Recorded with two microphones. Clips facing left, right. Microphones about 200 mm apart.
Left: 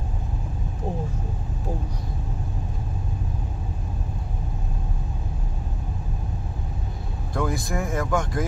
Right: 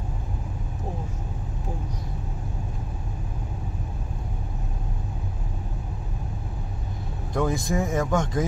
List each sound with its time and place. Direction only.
7.3 s speech: 20° right (ahead or behind)